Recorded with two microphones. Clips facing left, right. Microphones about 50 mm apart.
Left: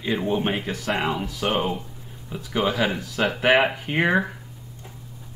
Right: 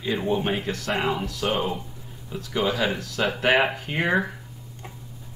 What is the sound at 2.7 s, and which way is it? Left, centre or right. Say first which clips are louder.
Speech: left 1 dB; left.